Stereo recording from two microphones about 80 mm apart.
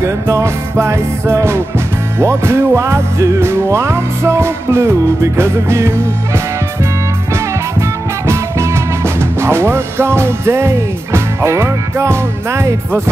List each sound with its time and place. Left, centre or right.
0.0 s music: right
8.3 s music: right